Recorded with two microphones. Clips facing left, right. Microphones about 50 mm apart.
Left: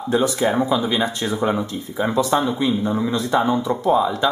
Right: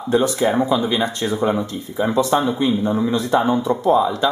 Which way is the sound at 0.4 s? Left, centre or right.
Centre.